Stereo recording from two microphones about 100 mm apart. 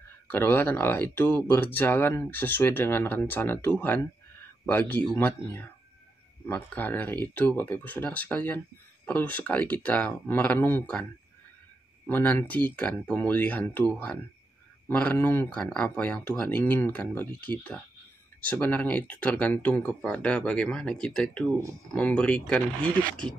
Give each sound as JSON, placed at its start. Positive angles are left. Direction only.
{"t": 0.3, "sound": "speech", "side_deg": 20}
{"t": 12.1, "sound": "speech", "side_deg": 20}
{"t": 15.5, "sound": "speech", "side_deg": 10}